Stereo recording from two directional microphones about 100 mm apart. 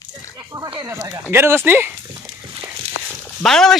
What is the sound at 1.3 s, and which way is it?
Speech, 25° right (ahead or behind).